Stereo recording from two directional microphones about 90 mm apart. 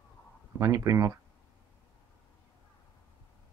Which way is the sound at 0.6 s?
35° right (ahead or behind).